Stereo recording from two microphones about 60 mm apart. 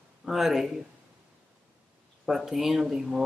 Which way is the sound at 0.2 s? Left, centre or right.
Centre.